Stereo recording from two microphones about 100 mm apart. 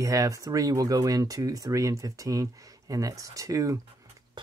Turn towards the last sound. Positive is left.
turn(degrees=-35)  # may be behind; listen again after turning